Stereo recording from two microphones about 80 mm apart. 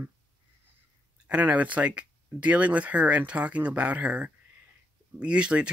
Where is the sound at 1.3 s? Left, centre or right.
Centre.